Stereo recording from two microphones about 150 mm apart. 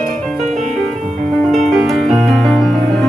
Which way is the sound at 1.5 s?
Centre (ahead or behind).